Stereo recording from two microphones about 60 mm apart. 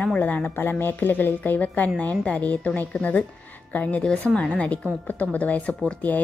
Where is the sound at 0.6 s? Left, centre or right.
Left.